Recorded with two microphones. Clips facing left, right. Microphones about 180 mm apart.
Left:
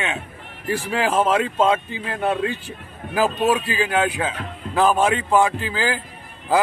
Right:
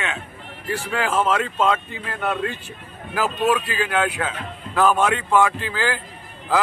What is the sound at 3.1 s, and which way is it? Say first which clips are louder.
Speech: left 2 dB; 15° left (ahead or behind).